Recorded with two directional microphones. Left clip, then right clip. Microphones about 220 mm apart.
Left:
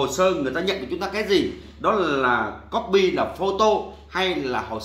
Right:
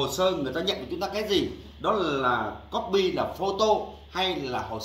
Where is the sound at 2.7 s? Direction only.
10° right (ahead or behind).